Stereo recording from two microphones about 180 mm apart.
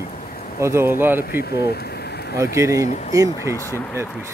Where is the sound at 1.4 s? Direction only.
60° left (ahead or behind).